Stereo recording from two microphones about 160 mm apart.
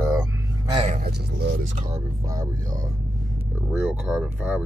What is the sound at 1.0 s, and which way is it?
Speech, 70° right (ahead or behind).